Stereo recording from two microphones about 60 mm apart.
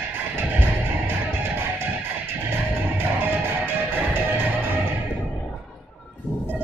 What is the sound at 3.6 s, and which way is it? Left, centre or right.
Music, right.